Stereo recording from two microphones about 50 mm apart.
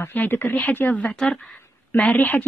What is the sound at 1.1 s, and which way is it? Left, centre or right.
Speech, centre.